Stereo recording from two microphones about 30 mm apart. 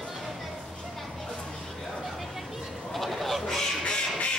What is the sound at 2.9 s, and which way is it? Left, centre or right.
Goose, centre.